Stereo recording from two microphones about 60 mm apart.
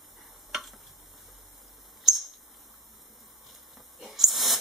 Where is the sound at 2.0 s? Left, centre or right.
Centre.